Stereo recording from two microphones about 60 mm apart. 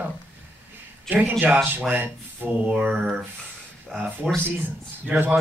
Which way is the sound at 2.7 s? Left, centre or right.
Centre.